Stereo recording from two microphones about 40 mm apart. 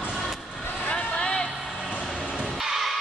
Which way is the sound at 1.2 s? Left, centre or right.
Centre.